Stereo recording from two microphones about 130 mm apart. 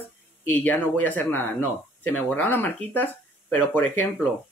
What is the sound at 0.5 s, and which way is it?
Speech, 15° left (ahead or behind).